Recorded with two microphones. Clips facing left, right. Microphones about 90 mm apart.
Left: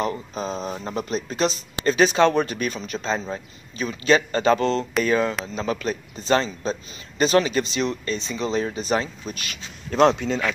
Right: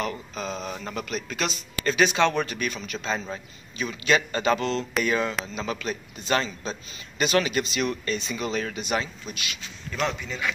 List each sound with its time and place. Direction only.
0.0 s a man's voice: 35° left (ahead or behind)
9.8 s speech: 65° left (ahead or behind); by 10.4 s 80° left